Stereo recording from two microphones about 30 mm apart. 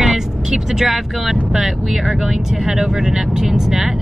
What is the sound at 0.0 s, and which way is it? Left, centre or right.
Vehicle, right.